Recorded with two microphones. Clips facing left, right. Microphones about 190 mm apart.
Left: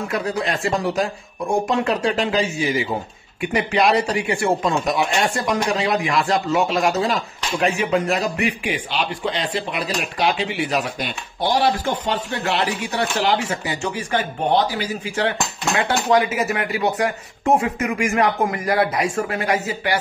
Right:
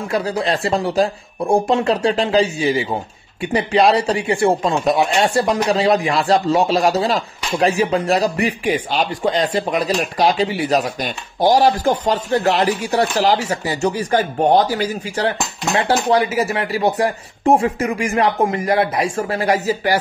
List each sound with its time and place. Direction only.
0.1 s speech: 30° right (ahead or behind)